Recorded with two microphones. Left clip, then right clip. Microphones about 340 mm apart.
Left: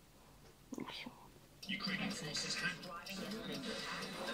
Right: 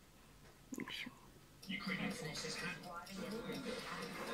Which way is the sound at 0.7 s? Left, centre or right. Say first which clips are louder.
Right 1 dB; centre.